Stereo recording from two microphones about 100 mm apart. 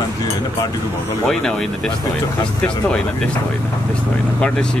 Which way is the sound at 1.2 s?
5° left (ahead or behind).